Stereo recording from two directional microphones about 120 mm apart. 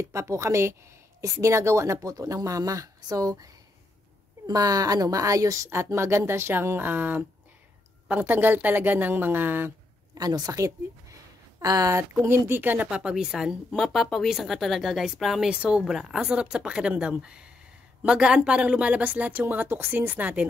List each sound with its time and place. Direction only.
0.0 s a woman's voice: 25° right (ahead or behind)
4.5 s a woman's voice: 30° right (ahead or behind)
10.1 s speech: 35° right (ahead or behind)
12.1 s speech: 20° right (ahead or behind)